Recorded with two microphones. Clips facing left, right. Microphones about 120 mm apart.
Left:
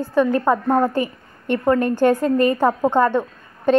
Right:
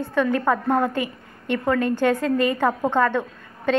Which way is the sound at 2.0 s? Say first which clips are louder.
Left 4 dB; 40° left (ahead or behind).